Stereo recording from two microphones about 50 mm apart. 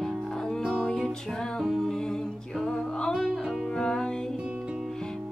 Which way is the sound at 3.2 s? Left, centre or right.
Centre.